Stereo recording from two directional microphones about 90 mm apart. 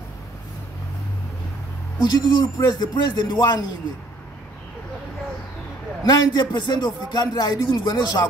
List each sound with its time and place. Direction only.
2.0 s a woman's voice: 50° left (ahead or behind)
6.0 s a woman's voice: 55° left (ahead or behind)